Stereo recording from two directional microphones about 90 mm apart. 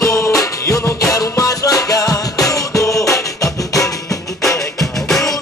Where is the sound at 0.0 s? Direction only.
35° left (ahead or behind).